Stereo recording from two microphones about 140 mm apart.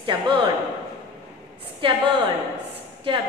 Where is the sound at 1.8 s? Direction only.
35° right (ahead or behind).